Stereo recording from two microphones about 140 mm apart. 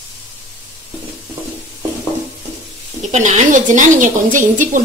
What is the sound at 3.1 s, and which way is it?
A woman's voice, 60° right (ahead or behind).